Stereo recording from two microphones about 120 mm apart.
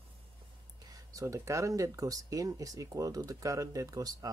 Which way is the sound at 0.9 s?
30° right (ahead or behind).